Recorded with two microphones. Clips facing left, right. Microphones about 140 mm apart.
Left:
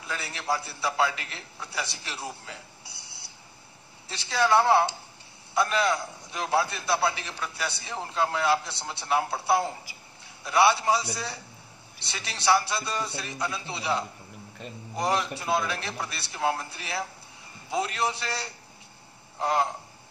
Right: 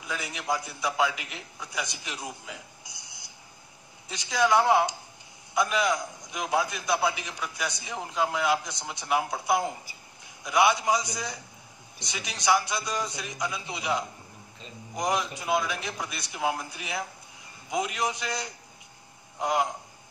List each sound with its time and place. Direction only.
0.0 s a man's voice: 15° right (ahead or behind)
2.8 s burping: 30° left (ahead or behind)
4.3 s a man's voice: 15° right (ahead or behind)